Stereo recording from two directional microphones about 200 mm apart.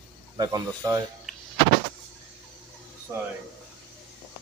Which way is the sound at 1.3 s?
Centre (ahead or behind).